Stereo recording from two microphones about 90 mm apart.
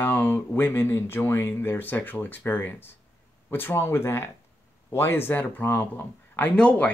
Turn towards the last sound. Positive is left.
turn(degrees=15)  # may be behind; listen again after turning